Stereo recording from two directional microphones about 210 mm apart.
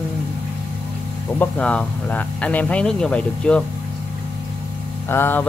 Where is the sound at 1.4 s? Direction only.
5° left (ahead or behind).